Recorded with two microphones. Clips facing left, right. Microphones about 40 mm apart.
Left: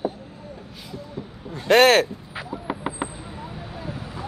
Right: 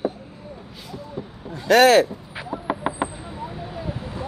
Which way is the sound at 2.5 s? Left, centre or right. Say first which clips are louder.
Right 4 dB; centre.